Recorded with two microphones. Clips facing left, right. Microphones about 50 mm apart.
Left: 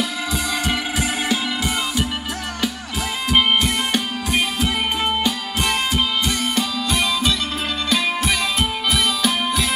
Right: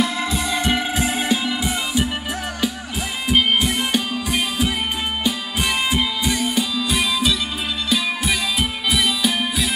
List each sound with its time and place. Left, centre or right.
0.0 s music: right
5.2 s music: centre
7.0 s music: centre